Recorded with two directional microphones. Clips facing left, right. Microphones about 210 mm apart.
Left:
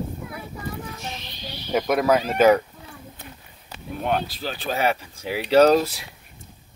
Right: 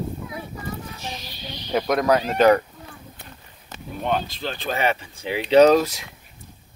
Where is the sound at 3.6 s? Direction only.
5° left (ahead or behind).